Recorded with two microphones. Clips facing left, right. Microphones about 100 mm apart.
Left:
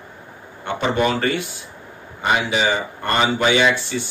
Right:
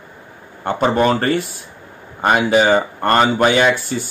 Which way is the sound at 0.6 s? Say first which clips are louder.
Right 4 dB; 40° right (ahead or behind).